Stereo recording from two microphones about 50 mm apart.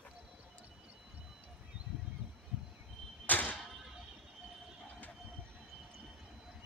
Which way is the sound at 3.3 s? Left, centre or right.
Left.